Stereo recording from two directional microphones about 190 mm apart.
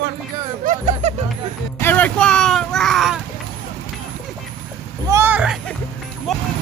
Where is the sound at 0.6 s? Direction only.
40° right (ahead or behind).